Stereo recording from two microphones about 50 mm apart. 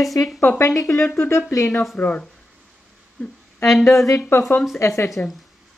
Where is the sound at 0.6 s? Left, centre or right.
Left.